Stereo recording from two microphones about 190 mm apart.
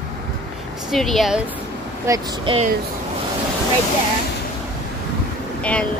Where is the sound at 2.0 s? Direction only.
20° right (ahead or behind).